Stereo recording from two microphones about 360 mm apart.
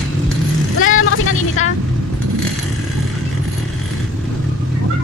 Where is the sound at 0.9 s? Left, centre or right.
Left.